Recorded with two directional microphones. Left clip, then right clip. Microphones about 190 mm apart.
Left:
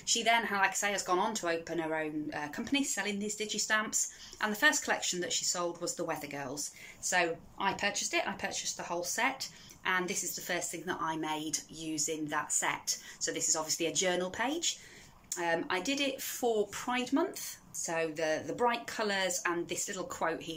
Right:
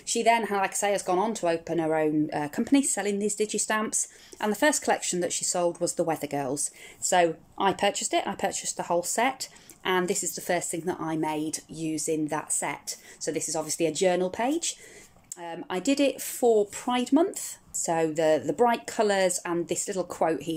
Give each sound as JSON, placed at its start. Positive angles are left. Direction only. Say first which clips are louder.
{"t": 0.0, "sound": "speech", "louder": "right 5 dB", "side_deg": -25}